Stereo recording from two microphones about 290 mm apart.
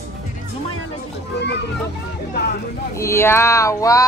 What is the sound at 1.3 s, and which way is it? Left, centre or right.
Children playing, left.